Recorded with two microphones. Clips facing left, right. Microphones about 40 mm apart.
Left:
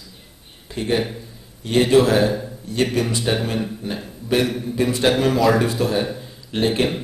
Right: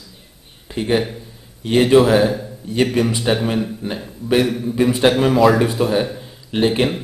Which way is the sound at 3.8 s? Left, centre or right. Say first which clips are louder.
Right 3 dB; centre.